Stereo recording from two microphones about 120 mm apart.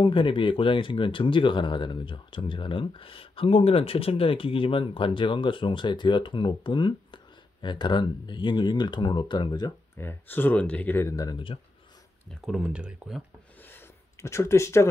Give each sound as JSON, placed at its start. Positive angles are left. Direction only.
{"t": 0.0, "sound": "speech", "side_deg": 45}
{"t": 9.9, "sound": "speech", "side_deg": 15}
{"t": 11.3, "sound": "speech", "side_deg": 45}
{"t": 12.4, "sound": "speech", "side_deg": -5}
{"t": 13.6, "sound": "a sound", "side_deg": 15}